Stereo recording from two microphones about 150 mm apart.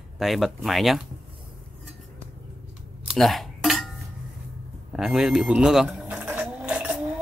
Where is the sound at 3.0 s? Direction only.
5° right (ahead or behind).